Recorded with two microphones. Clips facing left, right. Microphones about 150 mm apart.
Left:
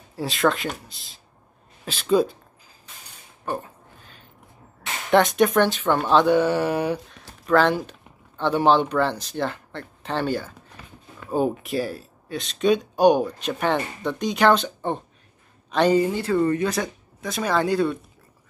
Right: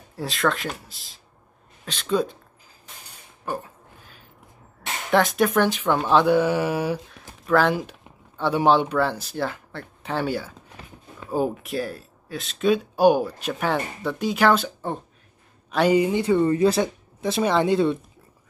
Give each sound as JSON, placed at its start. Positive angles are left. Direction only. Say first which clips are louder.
{"t": 0.1, "sound": "speech", "louder": "left 2 dB", "side_deg": 0}
{"t": 3.4, "sound": "a sound", "louder": "left 1 dB", "side_deg": -5}
{"t": 5.1, "sound": "speech", "louder": "left 2 dB", "side_deg": 0}
{"t": 16.4, "sound": "speech", "louder": "right 3 dB", "side_deg": -30}